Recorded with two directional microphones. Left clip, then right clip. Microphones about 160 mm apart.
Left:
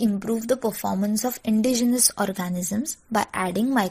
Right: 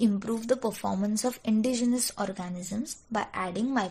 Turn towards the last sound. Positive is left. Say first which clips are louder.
# left 6 dB
turn(degrees=40)  # may be behind; listen again after turning